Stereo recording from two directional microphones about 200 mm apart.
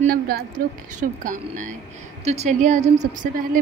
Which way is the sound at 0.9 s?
40° right (ahead or behind).